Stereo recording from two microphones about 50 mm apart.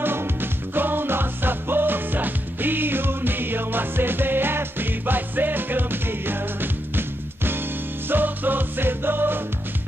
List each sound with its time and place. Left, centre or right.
0.0 s music: right